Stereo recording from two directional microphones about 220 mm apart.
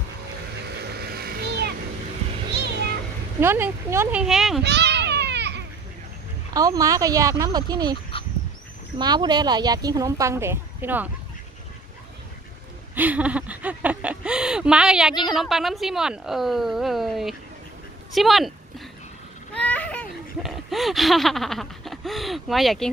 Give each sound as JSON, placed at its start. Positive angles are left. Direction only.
{"t": 0.7, "sound": "a sound", "side_deg": -45}
{"t": 3.3, "sound": "speech", "side_deg": -10}
{"t": 4.6, "sound": "a sound", "side_deg": -50}
{"t": 6.5, "sound": "speech", "side_deg": -15}
{"t": 12.9, "sound": "a woman's voice", "side_deg": -5}
{"t": 19.5, "sound": "speech", "side_deg": 5}